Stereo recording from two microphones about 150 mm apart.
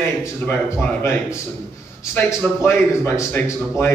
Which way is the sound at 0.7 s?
15° left (ahead or behind).